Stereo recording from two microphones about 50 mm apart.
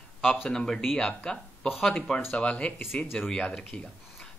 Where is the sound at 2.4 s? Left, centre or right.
Left.